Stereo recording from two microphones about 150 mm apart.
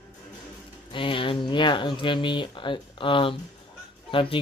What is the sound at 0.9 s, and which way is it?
Speech, 35° left (ahead or behind).